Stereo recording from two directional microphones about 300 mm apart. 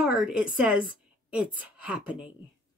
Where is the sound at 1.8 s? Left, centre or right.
Centre.